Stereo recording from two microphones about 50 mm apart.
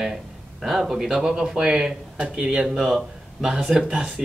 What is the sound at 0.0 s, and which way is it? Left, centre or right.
Speech, centre.